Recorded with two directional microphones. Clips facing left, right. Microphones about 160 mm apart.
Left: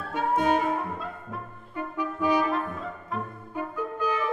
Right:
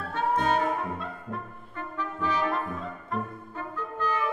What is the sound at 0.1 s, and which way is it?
Brass instrument, 10° left (ahead or behind).